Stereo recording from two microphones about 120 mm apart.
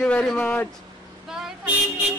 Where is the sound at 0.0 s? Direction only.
10° left (ahead or behind).